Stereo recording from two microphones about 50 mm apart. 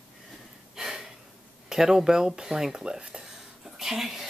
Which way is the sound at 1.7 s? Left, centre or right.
Centre.